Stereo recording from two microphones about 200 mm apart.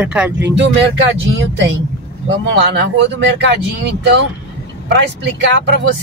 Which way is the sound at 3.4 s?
60° right (ahead or behind).